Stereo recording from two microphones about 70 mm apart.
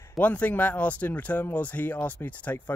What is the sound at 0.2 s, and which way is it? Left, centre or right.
Speech, left.